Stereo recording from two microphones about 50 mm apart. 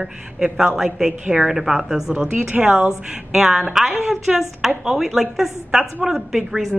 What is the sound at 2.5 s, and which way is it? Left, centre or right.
Speech, right.